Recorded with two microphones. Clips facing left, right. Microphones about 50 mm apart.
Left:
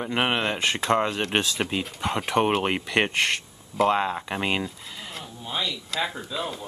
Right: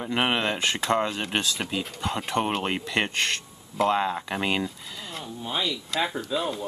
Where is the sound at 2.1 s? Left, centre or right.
Centre.